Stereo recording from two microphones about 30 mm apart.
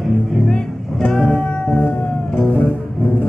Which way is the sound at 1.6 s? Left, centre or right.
Left.